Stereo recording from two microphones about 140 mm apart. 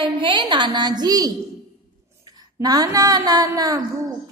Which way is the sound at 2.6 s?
25° right (ahead or behind).